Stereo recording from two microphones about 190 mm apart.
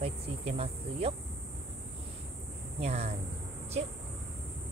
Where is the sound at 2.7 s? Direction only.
35° right (ahead or behind).